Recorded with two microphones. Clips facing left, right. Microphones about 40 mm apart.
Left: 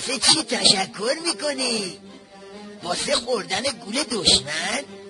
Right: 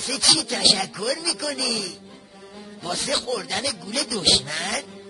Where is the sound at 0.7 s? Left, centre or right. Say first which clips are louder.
Left 2 dB; centre.